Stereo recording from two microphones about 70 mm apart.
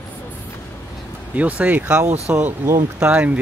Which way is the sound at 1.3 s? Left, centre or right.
Right.